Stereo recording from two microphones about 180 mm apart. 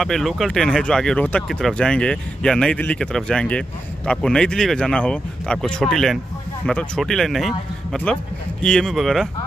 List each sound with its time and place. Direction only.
0.0 s speech: centre (ahead or behind)